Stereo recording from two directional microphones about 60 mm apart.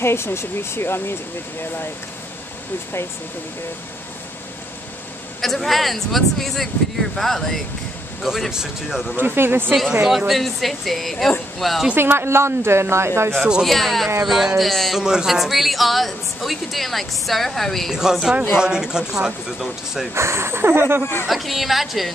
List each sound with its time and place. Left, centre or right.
0.0 s speech: left
5.4 s speech: centre
8.2 s speech: centre
9.1 s speech: right
10.0 s speech: centre
11.9 s speech: right
13.4 s speech: centre
13.7 s speech: centre
15.0 s speech: centre
18.6 s speech: centre
20.2 s speech: right
21.0 s speech: left
21.3 s speech: centre